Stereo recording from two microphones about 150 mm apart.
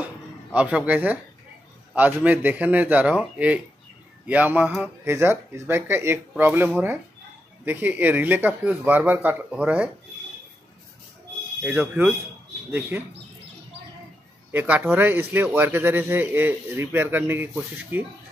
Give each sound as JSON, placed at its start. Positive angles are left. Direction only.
{"t": 0.0, "sound": "a sound", "side_deg": -10}
{"t": 2.0, "sound": "speech", "side_deg": -10}
{"t": 11.6, "sound": "speech", "side_deg": -10}
{"t": 14.5, "sound": "speech", "side_deg": -15}